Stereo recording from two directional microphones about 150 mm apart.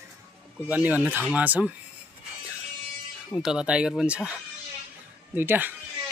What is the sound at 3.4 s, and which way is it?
Speech, 5° right (ahead or behind).